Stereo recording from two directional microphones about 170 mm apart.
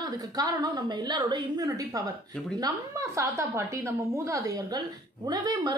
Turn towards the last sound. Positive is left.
turn(degrees=-20)  # may be behind; listen again after turning